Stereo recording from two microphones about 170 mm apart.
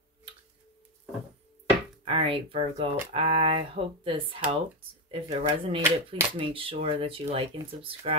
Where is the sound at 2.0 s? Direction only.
35° right (ahead or behind).